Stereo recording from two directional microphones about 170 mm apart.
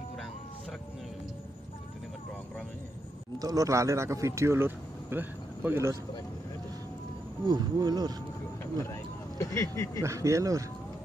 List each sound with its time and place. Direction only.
3.3 s speech: 20° right (ahead or behind)
7.4 s speech: 25° right (ahead or behind)
9.4 s speech: 15° left (ahead or behind)
10.0 s speech: 20° right (ahead or behind)